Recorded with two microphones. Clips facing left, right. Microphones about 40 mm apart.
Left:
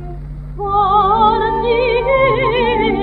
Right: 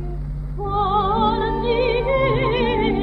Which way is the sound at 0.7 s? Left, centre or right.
Left.